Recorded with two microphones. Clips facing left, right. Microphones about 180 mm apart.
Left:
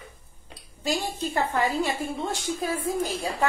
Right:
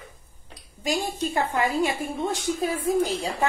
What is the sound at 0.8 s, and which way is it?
A woman's voice, 15° right (ahead or behind).